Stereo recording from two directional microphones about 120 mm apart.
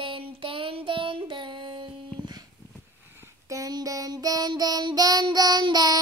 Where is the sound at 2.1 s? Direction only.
35° right (ahead or behind).